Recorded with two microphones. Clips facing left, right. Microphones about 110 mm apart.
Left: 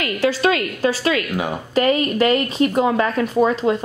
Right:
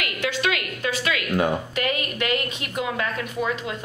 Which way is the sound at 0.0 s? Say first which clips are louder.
Left 7 dB; 35° left (ahead or behind).